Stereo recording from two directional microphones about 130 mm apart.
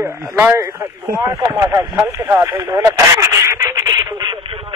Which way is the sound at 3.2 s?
20° right (ahead or behind).